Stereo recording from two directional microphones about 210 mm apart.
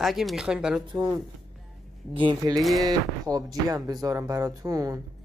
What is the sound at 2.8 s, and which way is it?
Speech, 15° right (ahead or behind).